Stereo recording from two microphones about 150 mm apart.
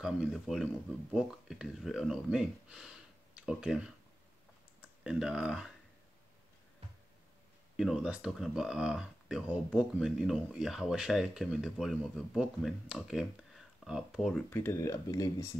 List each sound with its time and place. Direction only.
0.0 s speech: centre (ahead or behind)
7.7 s speech: 5° right (ahead or behind)
14.5 s speech: 15° left (ahead or behind)